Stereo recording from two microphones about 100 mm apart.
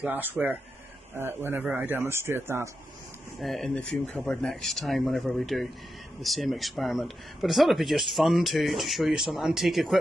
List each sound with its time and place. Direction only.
0.0 s a man's voice: 20° right (ahead or behind)
3.3 s speech: centre (ahead or behind)